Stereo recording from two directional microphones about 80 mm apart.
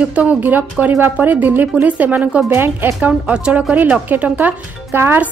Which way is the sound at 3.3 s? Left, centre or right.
Centre.